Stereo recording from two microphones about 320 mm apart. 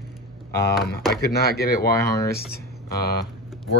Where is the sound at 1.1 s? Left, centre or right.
Left.